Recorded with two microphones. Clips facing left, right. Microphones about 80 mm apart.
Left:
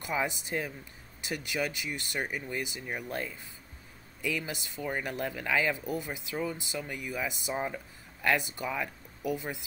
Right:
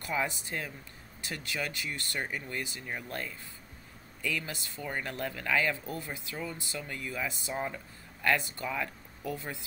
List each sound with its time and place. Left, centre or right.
0.0 s speech: centre